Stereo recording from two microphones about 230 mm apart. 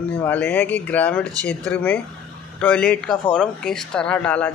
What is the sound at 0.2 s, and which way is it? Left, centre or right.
Speech, centre.